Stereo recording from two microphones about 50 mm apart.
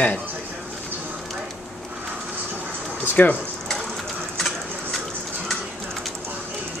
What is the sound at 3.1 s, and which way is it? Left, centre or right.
Speech, left.